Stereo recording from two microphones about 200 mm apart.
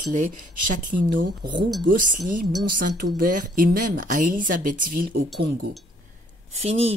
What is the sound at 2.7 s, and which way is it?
Speech, 45° right (ahead or behind).